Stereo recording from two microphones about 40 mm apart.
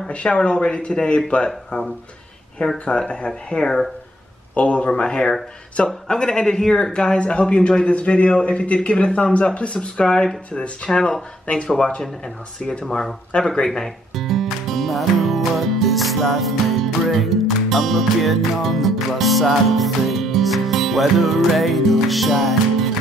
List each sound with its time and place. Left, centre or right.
0.1 s a man's voice: left
3.5 s speech: centre
4.6 s a man's voice: left
10.9 s a man's voice: centre
13.3 s a man's voice: left
13.7 s speech: centre